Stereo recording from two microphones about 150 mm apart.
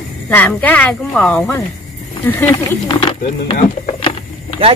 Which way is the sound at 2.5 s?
35° left (ahead or behind).